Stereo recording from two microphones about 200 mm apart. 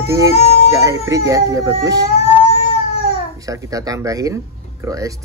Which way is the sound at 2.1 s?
35° left (ahead or behind).